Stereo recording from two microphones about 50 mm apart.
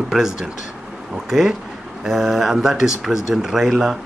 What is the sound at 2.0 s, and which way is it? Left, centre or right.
Speech, centre.